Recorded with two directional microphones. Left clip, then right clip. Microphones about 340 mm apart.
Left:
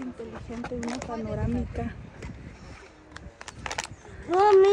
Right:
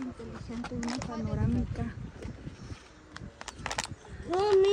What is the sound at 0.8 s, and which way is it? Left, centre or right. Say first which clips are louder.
Speech: left 1 dB; right.